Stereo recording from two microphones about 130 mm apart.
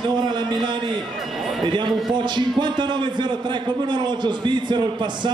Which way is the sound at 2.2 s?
35° right (ahead or behind).